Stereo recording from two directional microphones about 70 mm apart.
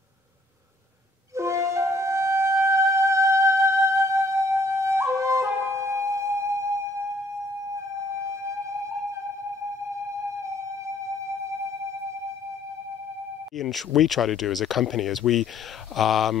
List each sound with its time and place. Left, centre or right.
1.3 s flute: right
13.6 s speech: centre